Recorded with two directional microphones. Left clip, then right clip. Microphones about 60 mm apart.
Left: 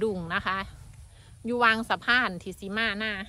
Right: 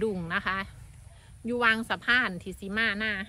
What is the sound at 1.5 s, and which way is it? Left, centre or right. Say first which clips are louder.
A woman's voice: left 2 dB; left.